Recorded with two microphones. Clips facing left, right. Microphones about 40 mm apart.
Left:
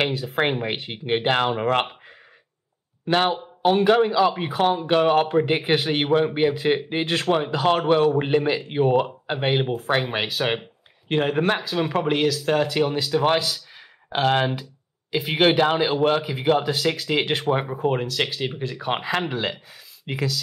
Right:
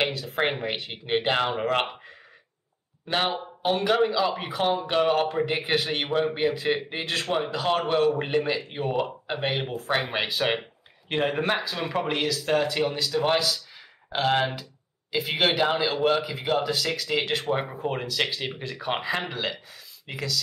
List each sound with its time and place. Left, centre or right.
0.1 s speech: centre
3.1 s speech: centre
9.7 s speech: centre